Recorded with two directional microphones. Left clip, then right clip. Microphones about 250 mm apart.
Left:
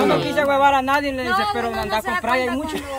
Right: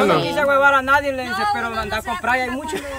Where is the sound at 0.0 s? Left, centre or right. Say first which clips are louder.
Right 1 dB; centre.